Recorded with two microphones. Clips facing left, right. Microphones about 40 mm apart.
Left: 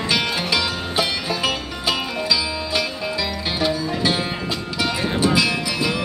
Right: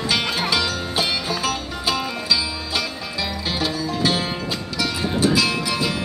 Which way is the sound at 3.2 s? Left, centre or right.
Left.